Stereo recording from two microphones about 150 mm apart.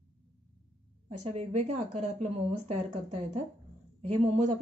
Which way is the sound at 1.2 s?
45° right (ahead or behind).